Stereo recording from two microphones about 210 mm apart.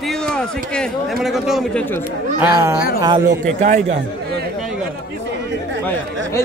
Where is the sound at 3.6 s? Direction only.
35° right (ahead or behind).